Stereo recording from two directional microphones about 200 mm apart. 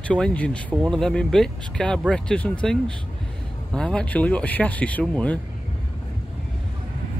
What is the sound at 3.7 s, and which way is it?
Speech, 5° left (ahead or behind).